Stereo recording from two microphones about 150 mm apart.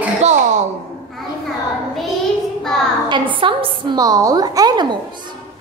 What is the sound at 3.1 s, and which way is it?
A woman's voice, 35° right (ahead or behind).